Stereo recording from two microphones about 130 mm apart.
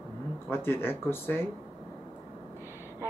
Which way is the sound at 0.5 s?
20° left (ahead or behind).